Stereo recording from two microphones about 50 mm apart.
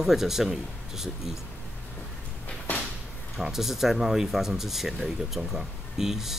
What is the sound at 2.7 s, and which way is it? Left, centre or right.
Drawer open or close, left.